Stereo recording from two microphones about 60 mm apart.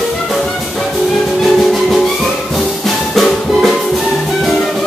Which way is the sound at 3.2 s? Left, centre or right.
Centre.